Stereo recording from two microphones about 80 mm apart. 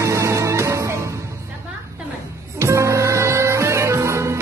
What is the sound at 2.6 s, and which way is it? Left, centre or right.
Music, right.